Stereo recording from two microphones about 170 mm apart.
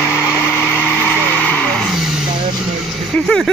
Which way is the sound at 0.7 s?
10° left (ahead or behind).